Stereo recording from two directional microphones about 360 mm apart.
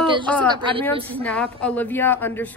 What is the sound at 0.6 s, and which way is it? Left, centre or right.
Speech, centre.